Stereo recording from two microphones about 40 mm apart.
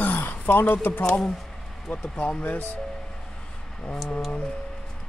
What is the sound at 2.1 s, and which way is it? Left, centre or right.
Speech, left.